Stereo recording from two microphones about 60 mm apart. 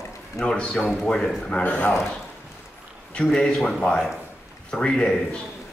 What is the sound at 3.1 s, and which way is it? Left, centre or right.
A man's voice, centre.